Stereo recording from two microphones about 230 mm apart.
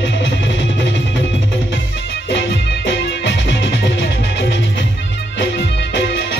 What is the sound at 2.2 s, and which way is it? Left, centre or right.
Music, left.